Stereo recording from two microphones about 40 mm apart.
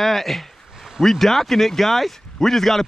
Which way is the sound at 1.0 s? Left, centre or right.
Centre.